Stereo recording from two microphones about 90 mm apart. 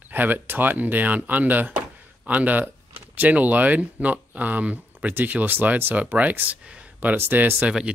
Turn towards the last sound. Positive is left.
turn(degrees=-10)  # may be behind; listen again after turning